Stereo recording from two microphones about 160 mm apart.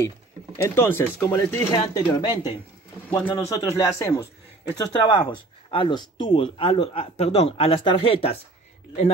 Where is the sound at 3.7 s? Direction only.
20° left (ahead or behind).